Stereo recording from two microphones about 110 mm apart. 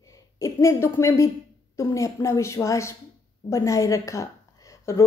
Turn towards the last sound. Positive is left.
turn(degrees=25)  # may be behind; listen again after turning